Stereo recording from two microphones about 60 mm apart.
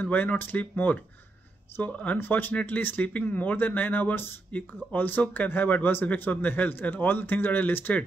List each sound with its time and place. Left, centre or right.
0.0 s speech: left
2.1 s speech: left